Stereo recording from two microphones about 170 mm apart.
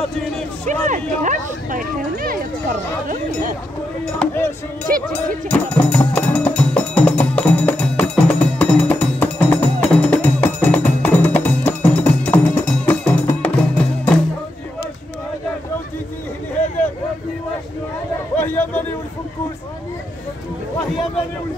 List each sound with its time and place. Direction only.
0.7 s speech: 45° right (ahead or behind)
4.0 s speech: 10° left (ahead or behind)
5.1 s music: 10° left (ahead or behind)
18.3 s a sound: 10° left (ahead or behind)